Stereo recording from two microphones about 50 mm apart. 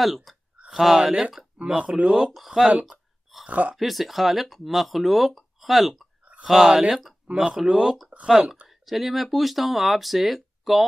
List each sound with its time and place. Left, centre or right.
0.0 s speech: centre
1.6 s speech: centre
2.9 s a sound: centre
3.4 s speech: right
3.7 s speech: centre
8.6 s speech: centre